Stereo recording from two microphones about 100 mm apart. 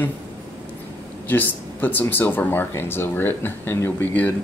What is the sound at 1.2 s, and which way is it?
Speech, 20° left (ahead or behind).